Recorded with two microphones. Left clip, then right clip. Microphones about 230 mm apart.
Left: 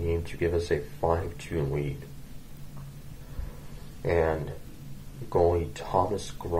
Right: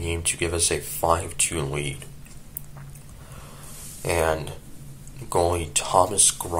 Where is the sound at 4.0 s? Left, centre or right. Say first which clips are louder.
Right 2 dB; centre.